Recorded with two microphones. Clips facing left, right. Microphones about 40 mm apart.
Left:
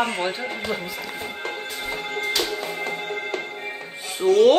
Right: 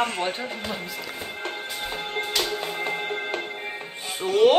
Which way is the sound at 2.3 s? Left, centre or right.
Right.